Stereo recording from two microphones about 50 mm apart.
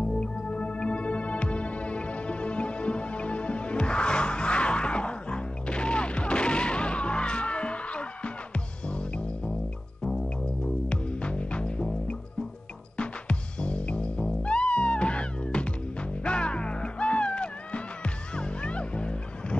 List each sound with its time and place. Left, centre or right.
0.0 s music: centre
10.9 s music: left